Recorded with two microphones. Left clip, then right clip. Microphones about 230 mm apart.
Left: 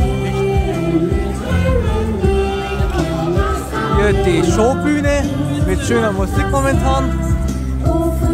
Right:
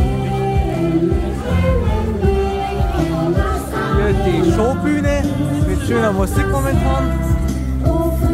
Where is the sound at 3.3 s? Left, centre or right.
Left.